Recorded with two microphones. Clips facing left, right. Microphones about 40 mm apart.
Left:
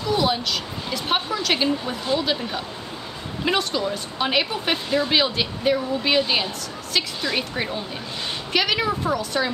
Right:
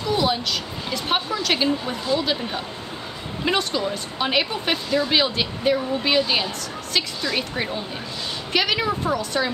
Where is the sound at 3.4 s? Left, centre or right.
Centre.